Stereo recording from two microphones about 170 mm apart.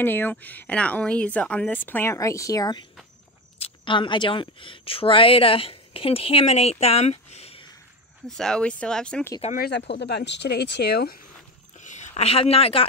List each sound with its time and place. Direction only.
0.0 s a woman's voice: 10° left (ahead or behind)
3.5 s speech: 30° left (ahead or behind)
8.3 s speech: 5° left (ahead or behind)
9.6 s speech: 85° left; by 11.1 s 70° left (ahead or behind)
11.8 s speech: 45° left (ahead or behind)